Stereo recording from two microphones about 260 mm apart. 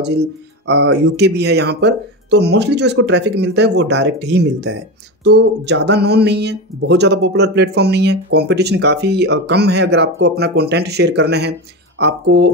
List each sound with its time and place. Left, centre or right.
0.7 s speech: right